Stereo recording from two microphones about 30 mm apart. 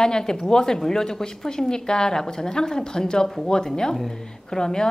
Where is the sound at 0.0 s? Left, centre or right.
Left.